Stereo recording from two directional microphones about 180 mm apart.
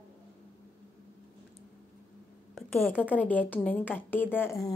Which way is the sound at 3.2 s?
10° left (ahead or behind).